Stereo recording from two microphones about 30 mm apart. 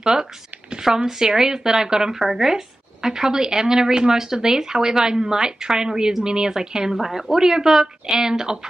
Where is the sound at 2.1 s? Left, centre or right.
Centre.